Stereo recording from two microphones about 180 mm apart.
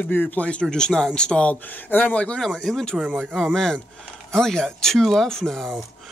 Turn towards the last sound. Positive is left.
turn(degrees=0)  # may be behind; listen again after turning